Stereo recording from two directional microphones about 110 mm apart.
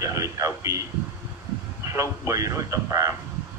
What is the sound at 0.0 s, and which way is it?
Speech, 30° right (ahead or behind).